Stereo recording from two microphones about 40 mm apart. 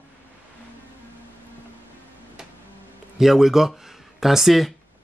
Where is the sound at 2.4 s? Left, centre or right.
Centre.